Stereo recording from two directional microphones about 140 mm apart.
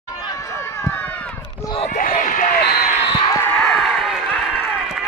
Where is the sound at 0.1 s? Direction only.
25° left (ahead or behind).